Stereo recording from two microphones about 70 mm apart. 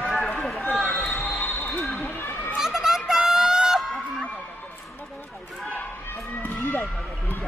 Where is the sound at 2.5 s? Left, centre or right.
Centre.